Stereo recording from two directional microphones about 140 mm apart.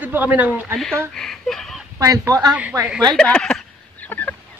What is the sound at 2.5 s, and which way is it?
Speech, 10° right (ahead or behind).